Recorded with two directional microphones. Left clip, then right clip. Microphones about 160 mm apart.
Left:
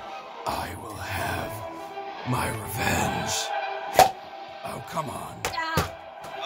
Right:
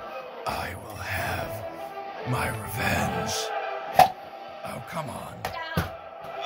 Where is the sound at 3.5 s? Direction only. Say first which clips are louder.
Left 1 dB; 85° right.